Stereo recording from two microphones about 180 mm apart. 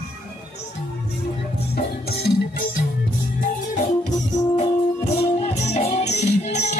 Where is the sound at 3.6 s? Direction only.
40° left (ahead or behind).